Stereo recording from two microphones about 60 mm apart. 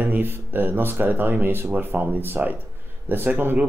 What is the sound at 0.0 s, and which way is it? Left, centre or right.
A man's voice, right.